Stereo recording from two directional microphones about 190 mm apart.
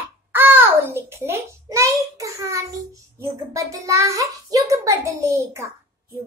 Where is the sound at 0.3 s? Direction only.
10° right (ahead or behind).